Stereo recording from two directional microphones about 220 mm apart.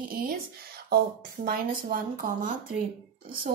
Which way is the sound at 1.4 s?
40° right (ahead or behind).